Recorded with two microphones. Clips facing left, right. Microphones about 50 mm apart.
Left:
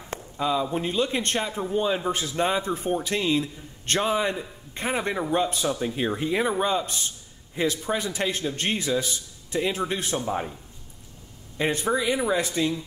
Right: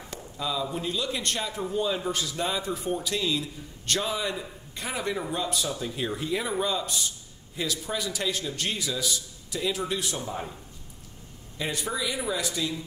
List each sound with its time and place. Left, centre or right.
0.1 s speech: left
11.5 s speech: left